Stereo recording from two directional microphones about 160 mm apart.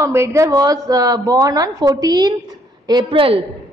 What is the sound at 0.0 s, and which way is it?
A woman's voice, 15° right (ahead or behind).